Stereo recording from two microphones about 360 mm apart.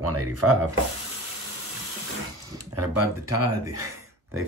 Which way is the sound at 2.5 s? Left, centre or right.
Right.